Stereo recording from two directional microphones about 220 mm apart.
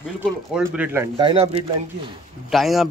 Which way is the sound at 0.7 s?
10° right (ahead or behind).